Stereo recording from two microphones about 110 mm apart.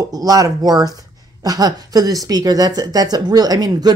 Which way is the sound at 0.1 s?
35° right (ahead or behind).